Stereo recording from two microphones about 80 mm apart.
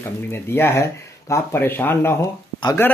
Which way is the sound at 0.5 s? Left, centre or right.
Left.